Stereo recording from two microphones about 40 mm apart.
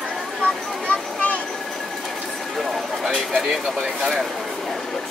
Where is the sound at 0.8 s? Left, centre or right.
Left.